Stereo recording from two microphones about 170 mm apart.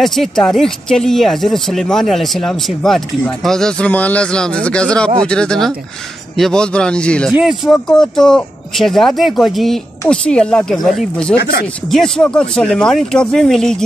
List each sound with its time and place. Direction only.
0.0 s speech: centre (ahead or behind)
11.3 s speech: 70° left (ahead or behind)
11.6 s speech: 5° left (ahead or behind)